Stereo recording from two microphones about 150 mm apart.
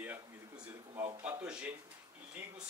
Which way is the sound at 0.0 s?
10° right (ahead or behind).